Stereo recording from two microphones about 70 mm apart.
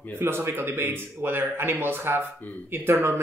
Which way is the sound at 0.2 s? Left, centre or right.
Right.